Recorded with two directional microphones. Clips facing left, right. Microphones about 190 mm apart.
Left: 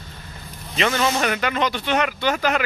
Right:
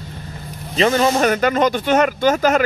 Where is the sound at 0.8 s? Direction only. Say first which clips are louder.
Right 6 dB; 35° right (ahead or behind).